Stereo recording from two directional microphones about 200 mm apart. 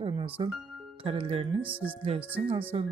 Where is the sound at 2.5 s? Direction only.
25° right (ahead or behind).